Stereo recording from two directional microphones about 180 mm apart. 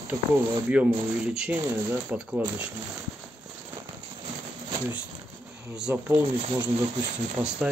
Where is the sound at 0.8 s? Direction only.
5° right (ahead or behind).